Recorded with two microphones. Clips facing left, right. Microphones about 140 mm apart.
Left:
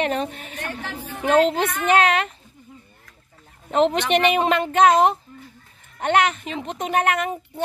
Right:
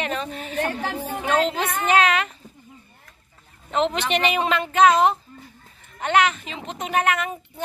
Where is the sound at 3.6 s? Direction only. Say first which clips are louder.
Left 4 dB; 50° left (ahead or behind).